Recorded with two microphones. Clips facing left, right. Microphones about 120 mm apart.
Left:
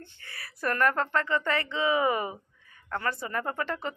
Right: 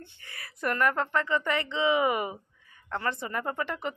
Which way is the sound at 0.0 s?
25° right (ahead or behind).